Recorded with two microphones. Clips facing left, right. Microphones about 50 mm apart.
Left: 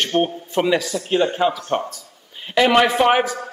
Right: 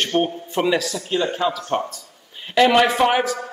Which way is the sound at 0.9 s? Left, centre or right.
Left.